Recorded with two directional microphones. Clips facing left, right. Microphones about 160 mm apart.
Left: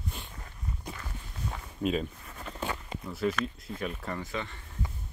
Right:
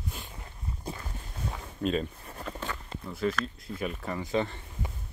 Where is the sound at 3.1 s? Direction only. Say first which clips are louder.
Even; 5° left (ahead or behind).